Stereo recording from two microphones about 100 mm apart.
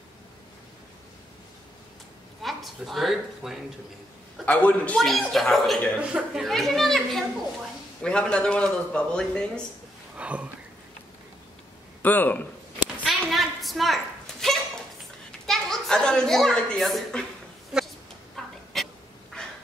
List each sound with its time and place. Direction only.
2.4 s a woman's voice: centre (ahead or behind)
4.5 s a man's voice: 15° left (ahead or behind)
4.9 s a child's voice: centre (ahead or behind)
5.9 s speech: 10° right (ahead or behind)
6.4 s a child's voice: centre (ahead or behind)
10.1 s a sound: 15° right (ahead or behind)
12.0 s speech: 20° left (ahead or behind)
13.2 s a sound: centre (ahead or behind)
15.4 s a child's voice: 5° left (ahead or behind)
17.7 s chicken: 5° right (ahead or behind)
18.3 s a sound: 5° left (ahead or behind)